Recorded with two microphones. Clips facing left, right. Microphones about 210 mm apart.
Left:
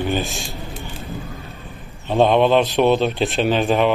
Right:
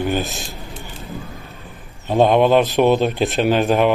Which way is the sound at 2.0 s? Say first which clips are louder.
Right 1 dB; 10° right (ahead or behind).